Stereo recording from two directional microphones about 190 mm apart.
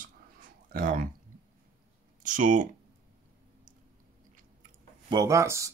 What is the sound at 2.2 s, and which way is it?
Speech, 45° right (ahead or behind).